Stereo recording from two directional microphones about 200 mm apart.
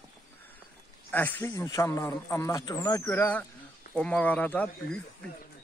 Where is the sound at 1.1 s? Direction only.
10° left (ahead or behind).